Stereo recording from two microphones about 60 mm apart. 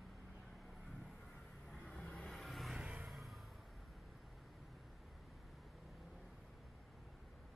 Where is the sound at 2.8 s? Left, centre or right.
Centre.